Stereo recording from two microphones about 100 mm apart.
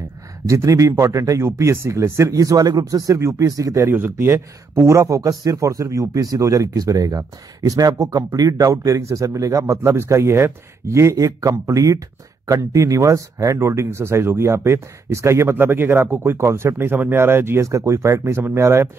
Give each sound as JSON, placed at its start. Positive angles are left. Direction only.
{"t": 0.5, "sound": "speech", "side_deg": -30}
{"t": 3.9, "sound": "speech", "side_deg": -20}